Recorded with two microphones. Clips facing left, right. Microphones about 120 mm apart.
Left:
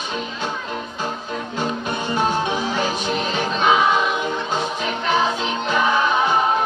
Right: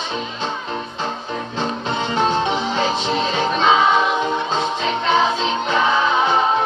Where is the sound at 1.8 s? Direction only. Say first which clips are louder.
Right 4 dB; 25° right (ahead or behind).